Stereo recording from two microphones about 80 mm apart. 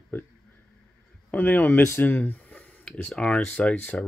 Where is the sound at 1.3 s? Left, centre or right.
Left.